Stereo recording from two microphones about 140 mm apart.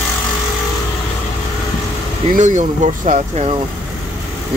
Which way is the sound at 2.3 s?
60° right (ahead or behind).